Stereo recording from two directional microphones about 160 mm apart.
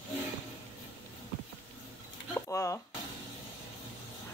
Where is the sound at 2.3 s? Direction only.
15° left (ahead or behind).